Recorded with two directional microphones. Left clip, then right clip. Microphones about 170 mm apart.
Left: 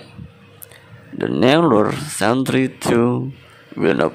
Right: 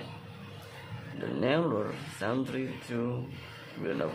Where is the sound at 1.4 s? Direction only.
70° left (ahead or behind).